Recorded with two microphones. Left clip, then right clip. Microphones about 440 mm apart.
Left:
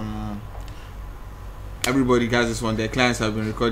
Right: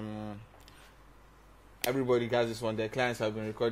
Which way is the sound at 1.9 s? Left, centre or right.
Right.